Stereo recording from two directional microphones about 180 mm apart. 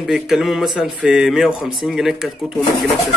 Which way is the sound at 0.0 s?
Centre (ahead or behind).